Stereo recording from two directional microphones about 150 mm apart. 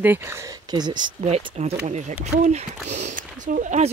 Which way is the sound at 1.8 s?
50° right (ahead or behind).